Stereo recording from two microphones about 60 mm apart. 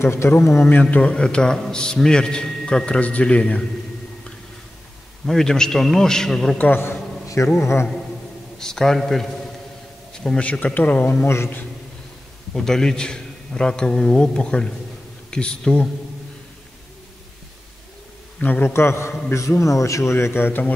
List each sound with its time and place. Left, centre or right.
0.0 s speech: left
0.7 s a man's voice: left
5.2 s a man's voice: centre
7.5 s speech: left
8.5 s a man's voice: centre
10.1 s a sound: centre
10.4 s speech: left
12.5 s a man's voice: centre
18.4 s speech: left
18.7 s speech: left
19.6 s speech: left